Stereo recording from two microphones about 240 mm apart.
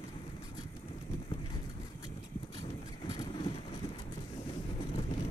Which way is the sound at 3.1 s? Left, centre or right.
Centre.